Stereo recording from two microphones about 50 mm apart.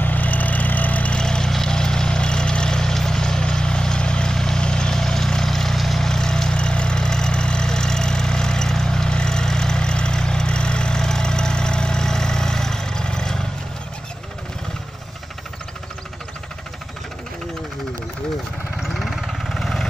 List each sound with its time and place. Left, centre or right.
0.0 s vehicle: left
1.1 s vehicle: centre
18.8 s vehicle: centre
19.5 s vehicle: centre